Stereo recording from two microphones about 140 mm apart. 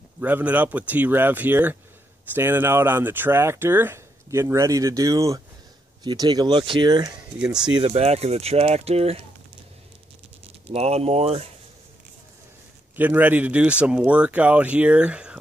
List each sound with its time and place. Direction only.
0.2 s speech: 10° right (ahead or behind); by 7.2 s 30° right (ahead or behind)
7.3 s speech: 5° right (ahead or behind)
7.7 s speech: 45° right (ahead or behind)
10.7 s speech: 50° right (ahead or behind)
12.9 s speech: 10° right (ahead or behind)